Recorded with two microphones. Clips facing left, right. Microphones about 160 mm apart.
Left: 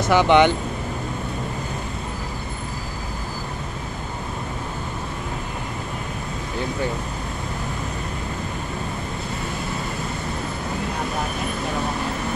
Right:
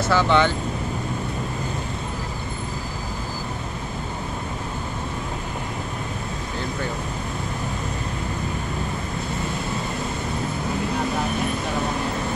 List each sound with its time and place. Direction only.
0.0 s speech: 15° left (ahead or behind)